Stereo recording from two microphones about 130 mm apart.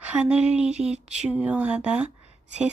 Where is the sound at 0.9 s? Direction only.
60° right (ahead or behind).